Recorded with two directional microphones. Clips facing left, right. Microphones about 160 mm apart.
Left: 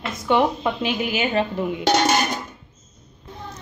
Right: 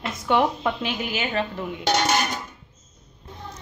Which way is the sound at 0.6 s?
5° left (ahead or behind).